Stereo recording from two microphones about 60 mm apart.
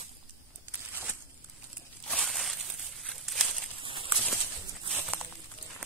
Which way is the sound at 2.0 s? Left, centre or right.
Centre.